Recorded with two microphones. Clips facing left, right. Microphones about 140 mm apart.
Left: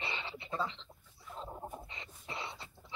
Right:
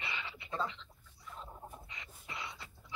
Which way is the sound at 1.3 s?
30° left (ahead or behind).